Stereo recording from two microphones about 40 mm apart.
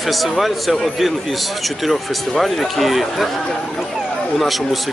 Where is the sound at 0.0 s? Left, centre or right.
Centre.